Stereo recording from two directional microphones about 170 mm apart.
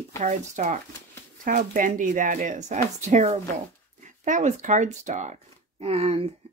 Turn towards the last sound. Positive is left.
turn(degrees=-35)  # may be behind; listen again after turning